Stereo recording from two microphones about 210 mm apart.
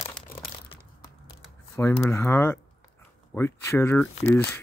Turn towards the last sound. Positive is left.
turn(degrees=10)  # may be behind; listen again after turning